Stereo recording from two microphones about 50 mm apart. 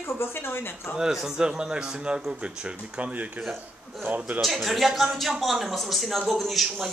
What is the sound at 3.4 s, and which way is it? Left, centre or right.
Speech, centre.